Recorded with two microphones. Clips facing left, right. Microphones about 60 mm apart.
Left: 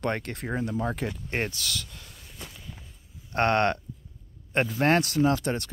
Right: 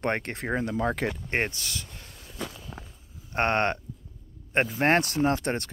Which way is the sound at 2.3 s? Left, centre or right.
Right.